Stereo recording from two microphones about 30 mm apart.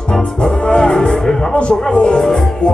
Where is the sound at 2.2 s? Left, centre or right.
Left.